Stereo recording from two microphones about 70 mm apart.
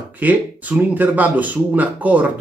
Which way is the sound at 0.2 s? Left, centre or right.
Right.